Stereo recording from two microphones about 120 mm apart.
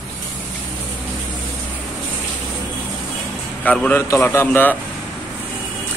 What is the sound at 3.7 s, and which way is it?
Speech, 10° left (ahead or behind).